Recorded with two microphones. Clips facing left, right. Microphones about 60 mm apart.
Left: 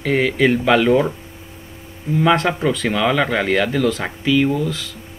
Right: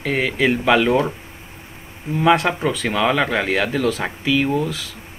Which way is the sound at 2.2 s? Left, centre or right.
Centre.